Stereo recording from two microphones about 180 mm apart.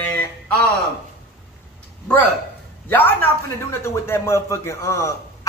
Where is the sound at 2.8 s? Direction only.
10° left (ahead or behind).